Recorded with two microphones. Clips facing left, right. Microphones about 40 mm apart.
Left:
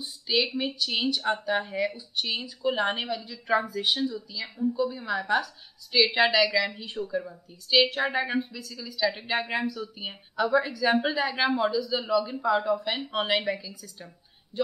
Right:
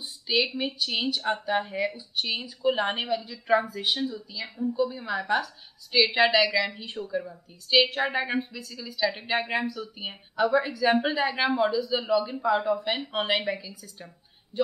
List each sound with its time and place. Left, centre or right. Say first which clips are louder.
0.3 s a woman's voice: even; centre